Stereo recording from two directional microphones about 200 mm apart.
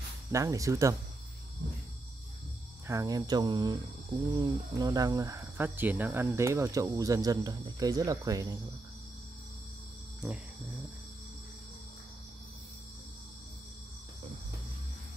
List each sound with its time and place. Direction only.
0.3 s speech: 15° right (ahead or behind)
2.9 s speech: 15° right (ahead or behind)
10.2 s cricket: centre (ahead or behind)